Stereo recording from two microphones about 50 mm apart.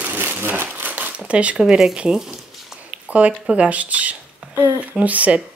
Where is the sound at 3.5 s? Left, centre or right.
Right.